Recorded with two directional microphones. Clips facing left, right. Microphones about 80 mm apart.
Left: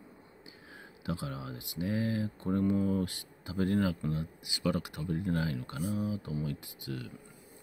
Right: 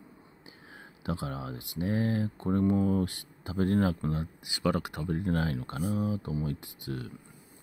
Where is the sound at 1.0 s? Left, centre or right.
Right.